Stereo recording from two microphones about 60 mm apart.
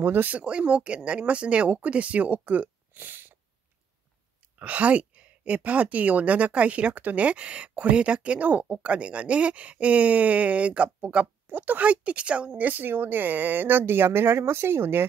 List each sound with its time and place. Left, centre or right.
0.0 s speech: right
0.4 s a woman's voice: centre; by 3.3 s right
4.6 s a woman's voice: right